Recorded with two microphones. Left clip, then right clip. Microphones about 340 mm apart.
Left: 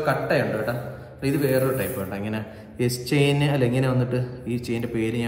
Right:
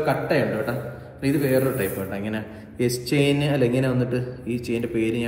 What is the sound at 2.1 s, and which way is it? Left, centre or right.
Speech, centre.